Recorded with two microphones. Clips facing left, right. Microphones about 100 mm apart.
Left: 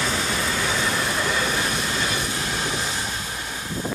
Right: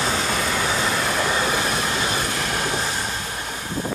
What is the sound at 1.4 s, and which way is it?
Train, 40° right (ahead or behind).